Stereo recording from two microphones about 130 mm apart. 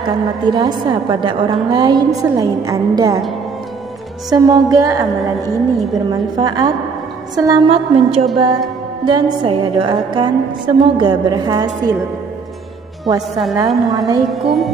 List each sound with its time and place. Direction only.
0.0 s a woman's voice: 35° right (ahead or behind)
4.3 s music: 30° right (ahead or behind)
5.9 s a woman's voice: 30° right (ahead or behind)
7.3 s music: 30° right (ahead or behind)
7.6 s a woman's voice: 50° right (ahead or behind)
9.0 s a woman's voice: 35° right (ahead or behind)
13.3 s music: centre (ahead or behind)
13.8 s music: 30° right (ahead or behind)
14.3 s music: centre (ahead or behind)